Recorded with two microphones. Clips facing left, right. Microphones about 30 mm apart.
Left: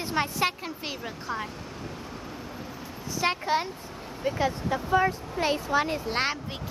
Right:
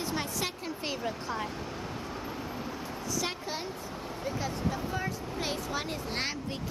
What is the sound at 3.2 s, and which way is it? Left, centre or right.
Speech, left.